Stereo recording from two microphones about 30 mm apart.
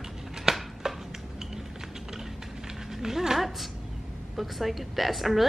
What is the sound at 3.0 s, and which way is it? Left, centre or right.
Speech, centre.